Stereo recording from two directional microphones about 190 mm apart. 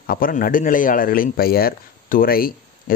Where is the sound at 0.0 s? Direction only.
50° left (ahead or behind).